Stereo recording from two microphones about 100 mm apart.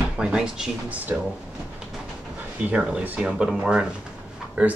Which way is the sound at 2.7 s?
10° right (ahead or behind).